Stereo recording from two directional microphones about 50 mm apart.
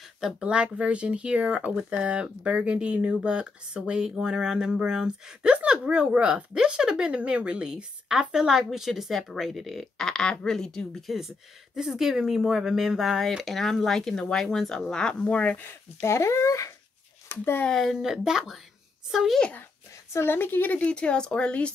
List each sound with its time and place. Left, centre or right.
0.4 s speech: centre
9.9 s speech: centre
11.1 s speech: centre; by 15.5 s left
16.0 s speech: left
17.3 s speech: left
17.9 s speech: centre
20.2 s speech: left
20.9 s speech: left